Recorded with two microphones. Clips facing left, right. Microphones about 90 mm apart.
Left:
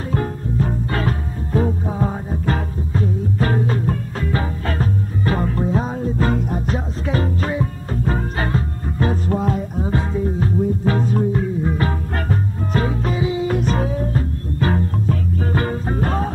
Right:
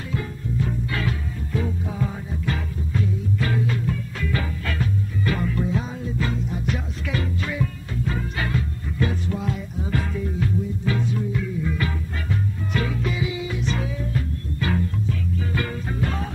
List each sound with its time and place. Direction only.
0.1 s music: 45° left (ahead or behind)